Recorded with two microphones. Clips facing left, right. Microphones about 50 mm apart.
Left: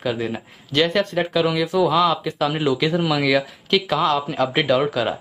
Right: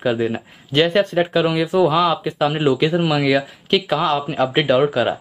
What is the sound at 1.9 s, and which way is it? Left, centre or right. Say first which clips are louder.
Speech: right 1 dB; centre.